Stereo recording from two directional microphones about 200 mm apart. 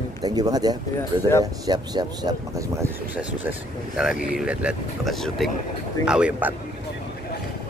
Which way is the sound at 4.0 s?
5° right (ahead or behind).